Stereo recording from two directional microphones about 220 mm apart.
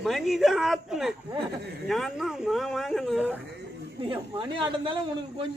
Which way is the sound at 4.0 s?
20° right (ahead or behind).